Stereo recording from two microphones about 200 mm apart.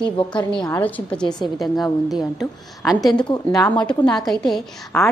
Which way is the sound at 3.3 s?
20° left (ahead or behind).